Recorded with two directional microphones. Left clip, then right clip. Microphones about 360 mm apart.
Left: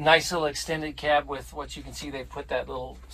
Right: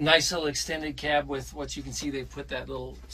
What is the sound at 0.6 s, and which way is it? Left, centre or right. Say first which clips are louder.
Speech: left 1 dB; centre.